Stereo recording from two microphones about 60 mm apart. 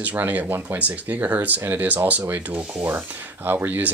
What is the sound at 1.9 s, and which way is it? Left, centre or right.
Speech, right.